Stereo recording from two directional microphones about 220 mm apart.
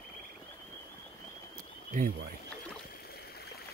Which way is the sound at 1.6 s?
40° right (ahead or behind).